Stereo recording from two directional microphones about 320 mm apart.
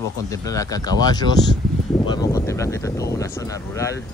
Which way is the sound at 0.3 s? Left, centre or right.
Centre.